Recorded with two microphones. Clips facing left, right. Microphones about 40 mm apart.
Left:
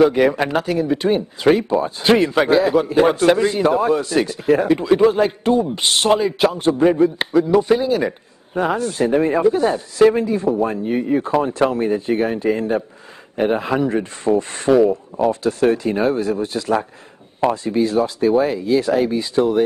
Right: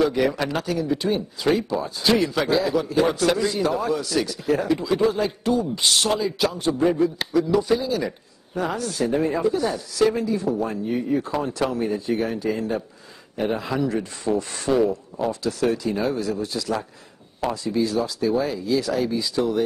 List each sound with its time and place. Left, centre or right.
0.0 s speech: left